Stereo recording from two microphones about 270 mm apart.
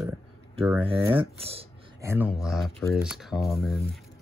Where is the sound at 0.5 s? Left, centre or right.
Centre.